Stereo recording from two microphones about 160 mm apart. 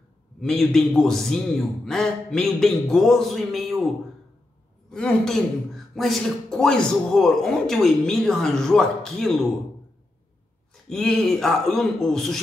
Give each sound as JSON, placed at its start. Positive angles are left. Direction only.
{"t": 0.4, "sound": "speech", "side_deg": 0}
{"t": 4.9, "sound": "speech", "side_deg": 5}
{"t": 10.7, "sound": "speech", "side_deg": 5}